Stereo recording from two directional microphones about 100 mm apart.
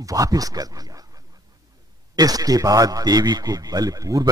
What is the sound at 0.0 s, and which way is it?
Speech, 35° right (ahead or behind).